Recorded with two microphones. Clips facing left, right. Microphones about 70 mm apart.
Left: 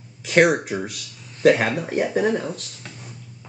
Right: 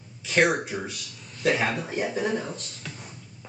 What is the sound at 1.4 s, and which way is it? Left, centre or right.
Speech, left.